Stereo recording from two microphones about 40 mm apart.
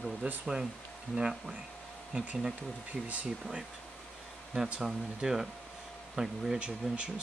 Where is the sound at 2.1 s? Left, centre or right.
Right.